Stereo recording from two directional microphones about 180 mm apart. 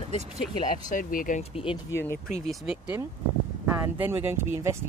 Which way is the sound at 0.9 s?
50° left (ahead or behind).